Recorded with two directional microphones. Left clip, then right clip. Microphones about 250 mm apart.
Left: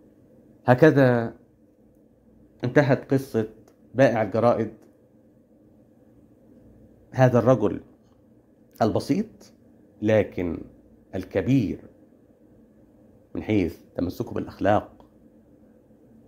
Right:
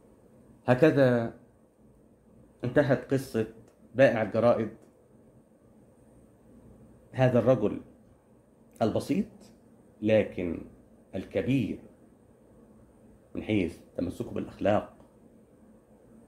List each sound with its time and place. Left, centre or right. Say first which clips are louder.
0.7 s speech: left 5 dB; left
2.6 s speech: left 4 dB; left
7.1 s speech: left 5 dB; left
11.4 s speech: left 6 dB; left
13.3 s speech: left 5 dB; left